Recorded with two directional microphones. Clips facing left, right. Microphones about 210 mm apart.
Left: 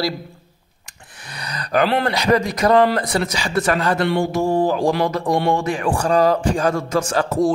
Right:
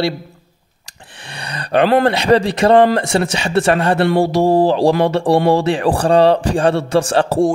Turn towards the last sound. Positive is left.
turn(degrees=-30)  # may be behind; listen again after turning